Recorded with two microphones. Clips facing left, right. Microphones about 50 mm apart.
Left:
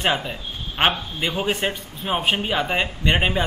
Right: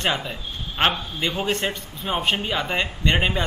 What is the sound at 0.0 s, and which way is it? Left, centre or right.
A man's voice, centre.